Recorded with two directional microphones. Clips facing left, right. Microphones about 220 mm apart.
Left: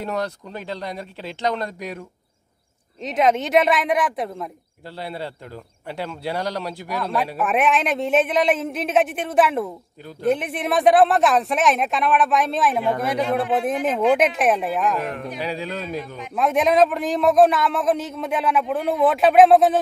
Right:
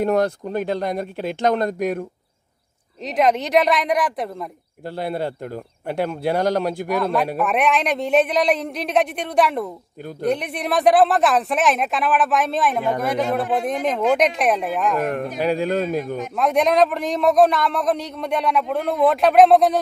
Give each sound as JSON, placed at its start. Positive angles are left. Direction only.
{"t": 0.0, "sound": "a man's voice", "side_deg": -50}
{"t": 3.0, "sound": "a man's voice", "side_deg": 0}
{"t": 4.8, "sound": "a man's voice", "side_deg": -50}
{"t": 7.3, "sound": "a man's voice", "side_deg": 0}
{"t": 13.8, "sound": "a man's voice", "side_deg": 5}
{"t": 15.0, "sound": "a man's voice", "side_deg": -50}
{"t": 16.3, "sound": "a man's voice", "side_deg": 0}